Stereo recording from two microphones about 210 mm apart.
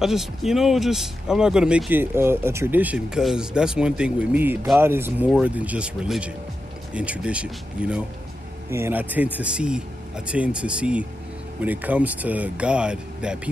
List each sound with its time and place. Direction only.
0.0 s speech: centre (ahead or behind)